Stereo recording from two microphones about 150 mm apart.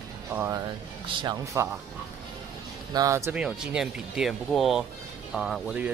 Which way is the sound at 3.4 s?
5° right (ahead or behind).